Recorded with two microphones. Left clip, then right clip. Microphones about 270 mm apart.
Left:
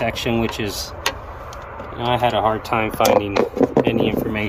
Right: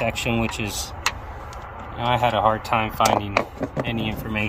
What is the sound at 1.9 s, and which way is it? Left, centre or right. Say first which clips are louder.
Speech: left 2 dB; right.